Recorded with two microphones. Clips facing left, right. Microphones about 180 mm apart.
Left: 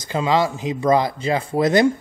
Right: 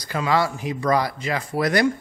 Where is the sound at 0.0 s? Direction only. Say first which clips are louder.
Left 3 dB; 25° left (ahead or behind).